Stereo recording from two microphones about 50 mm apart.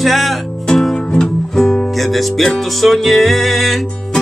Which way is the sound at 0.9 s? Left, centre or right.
Centre.